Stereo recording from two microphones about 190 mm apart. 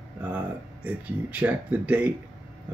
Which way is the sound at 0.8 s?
10° right (ahead or behind).